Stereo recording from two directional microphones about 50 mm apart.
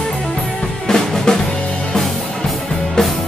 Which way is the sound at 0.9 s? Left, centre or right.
Centre.